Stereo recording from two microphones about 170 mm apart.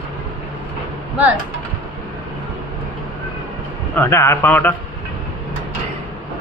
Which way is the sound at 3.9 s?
15° left (ahead or behind).